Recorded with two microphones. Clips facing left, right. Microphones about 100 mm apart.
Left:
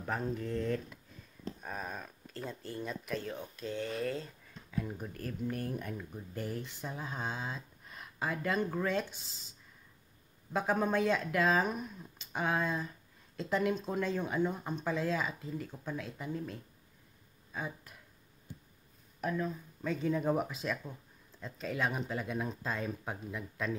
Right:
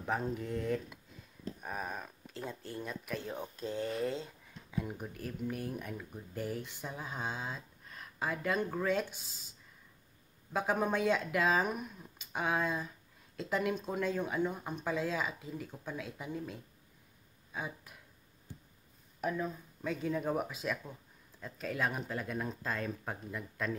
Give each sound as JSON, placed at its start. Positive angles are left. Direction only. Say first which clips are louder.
{"t": 0.0, "sound": "speech", "louder": "even", "side_deg": -15}
{"t": 3.3, "sound": "speech", "louder": "right 1 dB", "side_deg": -30}
{"t": 10.5, "sound": "speech", "louder": "left 1 dB", "side_deg": -5}
{"t": 19.2, "sound": "speech", "louder": "left 1 dB", "side_deg": -10}